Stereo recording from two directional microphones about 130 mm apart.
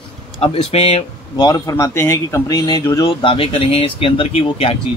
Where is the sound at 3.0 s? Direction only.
40° left (ahead or behind).